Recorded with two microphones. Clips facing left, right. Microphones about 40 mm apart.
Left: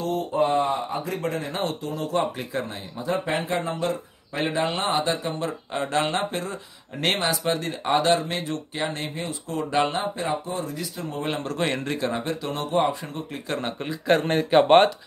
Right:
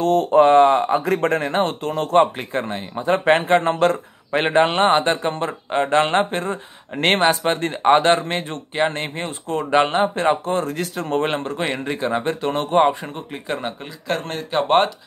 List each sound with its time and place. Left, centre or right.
0.0 s speech: right
3.3 s speech: right
10.1 s speech: right
11.4 s a man's voice: right
12.2 s speech: right
13.0 s a man's voice: right
13.8 s speech: centre